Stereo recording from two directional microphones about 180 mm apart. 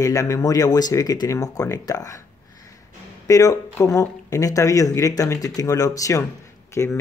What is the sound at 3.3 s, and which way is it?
Speech, 20° left (ahead or behind).